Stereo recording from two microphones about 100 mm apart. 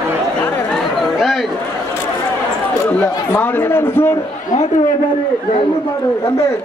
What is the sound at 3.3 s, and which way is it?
Speech, 20° left (ahead or behind).